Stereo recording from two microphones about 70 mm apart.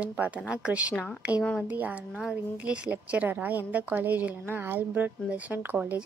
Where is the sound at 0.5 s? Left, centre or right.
Centre.